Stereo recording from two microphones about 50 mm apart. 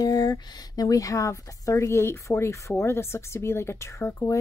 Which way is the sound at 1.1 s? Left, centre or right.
Left.